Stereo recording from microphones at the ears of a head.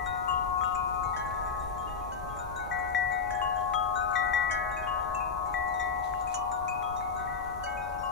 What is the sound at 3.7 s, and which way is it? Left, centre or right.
Wind chime, left.